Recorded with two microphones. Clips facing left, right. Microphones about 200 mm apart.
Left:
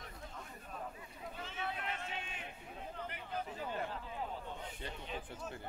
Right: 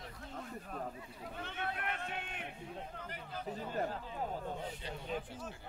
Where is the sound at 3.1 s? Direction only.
40° right (ahead or behind).